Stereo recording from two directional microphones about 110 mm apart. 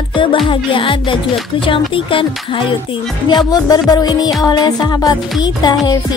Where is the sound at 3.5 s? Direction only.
35° left (ahead or behind).